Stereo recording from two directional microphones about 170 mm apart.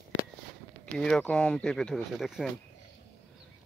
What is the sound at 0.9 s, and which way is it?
Speech, 5° left (ahead or behind).